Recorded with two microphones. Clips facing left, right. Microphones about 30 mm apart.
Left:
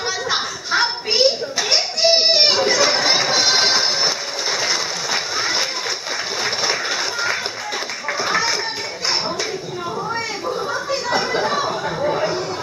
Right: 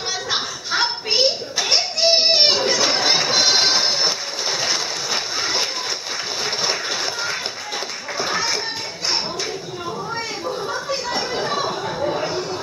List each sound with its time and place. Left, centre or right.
0.3 s a sound: centre
10.5 s children playing: centre
11.1 s chatter: centre